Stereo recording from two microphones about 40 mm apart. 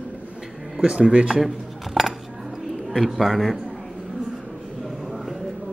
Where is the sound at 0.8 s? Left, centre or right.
Right.